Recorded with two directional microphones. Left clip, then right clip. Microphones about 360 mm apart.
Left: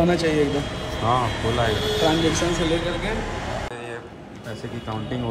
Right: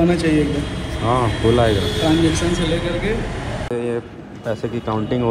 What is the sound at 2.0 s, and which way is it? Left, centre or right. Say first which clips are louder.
Speech: right 3 dB; left.